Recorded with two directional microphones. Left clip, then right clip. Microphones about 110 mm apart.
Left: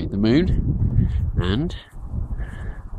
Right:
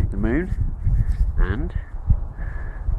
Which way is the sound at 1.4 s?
35° left (ahead or behind).